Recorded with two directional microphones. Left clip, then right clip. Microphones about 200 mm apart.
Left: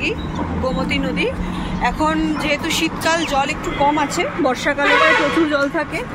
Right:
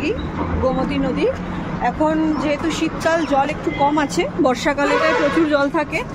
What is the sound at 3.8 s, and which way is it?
Speech, 65° right (ahead or behind).